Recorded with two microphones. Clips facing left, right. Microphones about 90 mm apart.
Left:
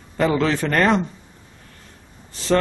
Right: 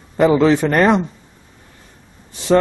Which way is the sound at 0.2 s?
15° right (ahead or behind).